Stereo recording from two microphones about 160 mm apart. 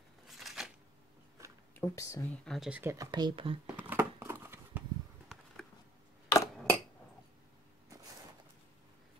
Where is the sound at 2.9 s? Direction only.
25° right (ahead or behind).